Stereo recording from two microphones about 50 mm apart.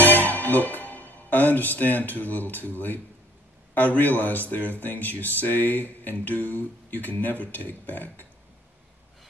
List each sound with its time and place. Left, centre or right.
0.0 s speech: left